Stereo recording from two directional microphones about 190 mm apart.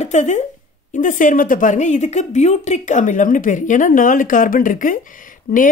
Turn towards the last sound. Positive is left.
turn(degrees=45)  # may be behind; listen again after turning